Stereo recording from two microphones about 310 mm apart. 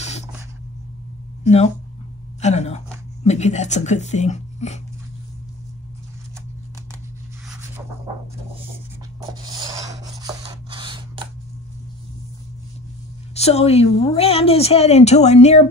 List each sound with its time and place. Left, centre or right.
2.4 s speech: left
10.2 s a sound: centre
13.3 s speech: centre